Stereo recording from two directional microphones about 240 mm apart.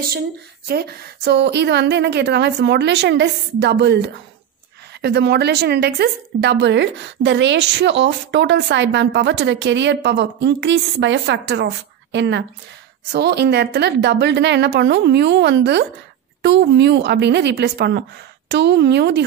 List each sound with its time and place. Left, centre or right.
0.7 s speech: right